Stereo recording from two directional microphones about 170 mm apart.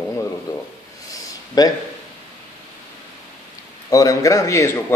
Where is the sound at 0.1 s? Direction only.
20° left (ahead or behind).